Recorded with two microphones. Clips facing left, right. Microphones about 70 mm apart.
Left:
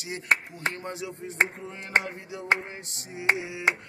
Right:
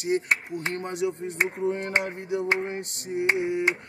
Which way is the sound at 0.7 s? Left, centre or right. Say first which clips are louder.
Right 9 dB; right.